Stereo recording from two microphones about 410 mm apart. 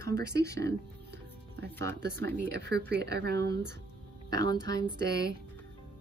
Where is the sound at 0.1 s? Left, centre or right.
Centre.